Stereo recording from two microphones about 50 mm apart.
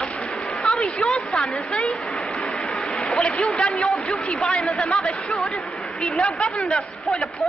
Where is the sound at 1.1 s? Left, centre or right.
Centre.